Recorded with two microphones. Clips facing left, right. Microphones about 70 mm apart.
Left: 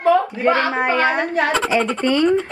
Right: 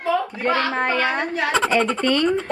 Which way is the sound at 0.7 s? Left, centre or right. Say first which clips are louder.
Left 3 dB; centre.